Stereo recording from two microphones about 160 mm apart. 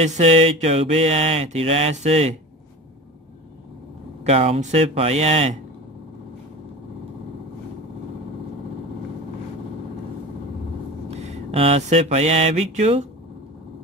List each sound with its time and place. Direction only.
0.0 s mantra: 45° right (ahead or behind)
4.2 s mantra: 40° right (ahead or behind)
11.1 s mantra: 40° right (ahead or behind)